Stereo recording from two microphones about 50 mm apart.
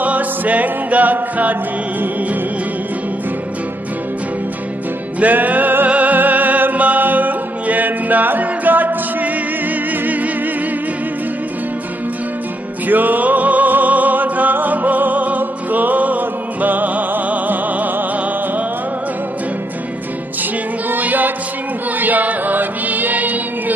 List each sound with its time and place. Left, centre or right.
0.0 s music: right
5.2 s music: right
12.8 s music: right
20.9 s music: right